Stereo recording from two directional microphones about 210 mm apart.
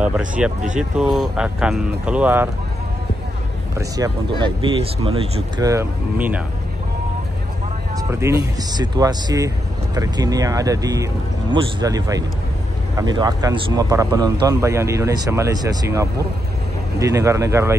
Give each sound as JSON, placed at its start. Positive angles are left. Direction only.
{"t": 0.4, "sound": "speech", "side_deg": -5}
{"t": 3.9, "sound": "speech", "side_deg": -20}
{"t": 7.9, "sound": "speech", "side_deg": -15}